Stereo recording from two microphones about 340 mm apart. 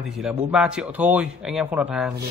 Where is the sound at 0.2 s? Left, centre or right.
Centre.